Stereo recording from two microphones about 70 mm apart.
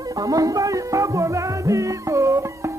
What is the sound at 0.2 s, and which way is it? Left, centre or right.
Music, right.